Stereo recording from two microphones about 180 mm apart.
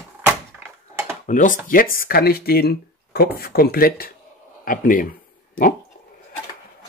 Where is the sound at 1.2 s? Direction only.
45° left (ahead or behind).